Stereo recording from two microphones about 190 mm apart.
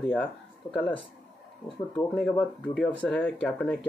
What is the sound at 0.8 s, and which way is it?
Speech, 25° left (ahead or behind).